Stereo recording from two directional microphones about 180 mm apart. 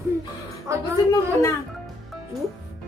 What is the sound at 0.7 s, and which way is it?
Speech, 15° right (ahead or behind).